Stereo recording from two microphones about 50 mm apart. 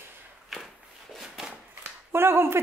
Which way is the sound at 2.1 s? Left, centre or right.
Right.